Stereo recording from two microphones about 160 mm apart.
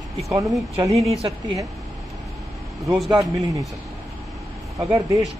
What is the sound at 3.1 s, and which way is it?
Speech, 20° right (ahead or behind).